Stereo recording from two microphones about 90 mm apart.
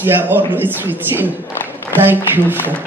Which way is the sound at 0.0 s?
25° right (ahead or behind).